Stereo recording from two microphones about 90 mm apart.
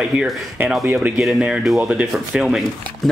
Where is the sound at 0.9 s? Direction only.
15° right (ahead or behind).